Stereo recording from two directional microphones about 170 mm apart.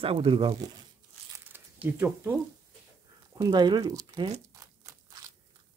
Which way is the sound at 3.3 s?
25° right (ahead or behind).